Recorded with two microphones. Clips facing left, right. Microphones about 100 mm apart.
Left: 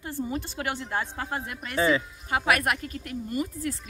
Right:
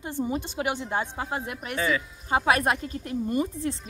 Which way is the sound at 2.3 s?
30° right (ahead or behind).